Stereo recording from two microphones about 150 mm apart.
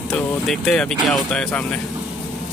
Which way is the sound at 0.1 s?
5° left (ahead or behind).